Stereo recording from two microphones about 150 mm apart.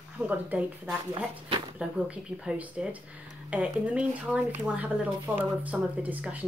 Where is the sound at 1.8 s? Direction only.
5° right (ahead or behind).